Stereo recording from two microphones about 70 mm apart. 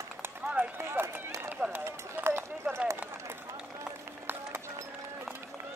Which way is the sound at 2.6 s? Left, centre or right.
Right.